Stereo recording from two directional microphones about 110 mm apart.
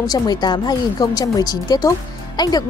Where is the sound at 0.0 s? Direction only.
35° left (ahead or behind).